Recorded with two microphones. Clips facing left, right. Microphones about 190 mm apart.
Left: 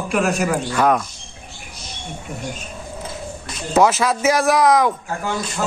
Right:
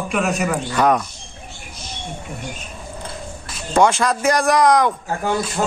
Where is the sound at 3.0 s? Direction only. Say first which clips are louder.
Left 2 dB; 5° left (ahead or behind).